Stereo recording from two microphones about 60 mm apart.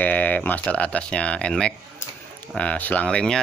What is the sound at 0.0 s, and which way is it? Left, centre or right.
Speech, left.